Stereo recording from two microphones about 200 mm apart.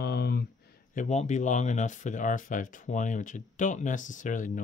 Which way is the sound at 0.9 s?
40° left (ahead or behind).